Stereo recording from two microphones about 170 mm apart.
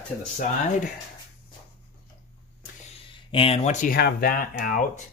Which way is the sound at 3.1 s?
30° left (ahead or behind).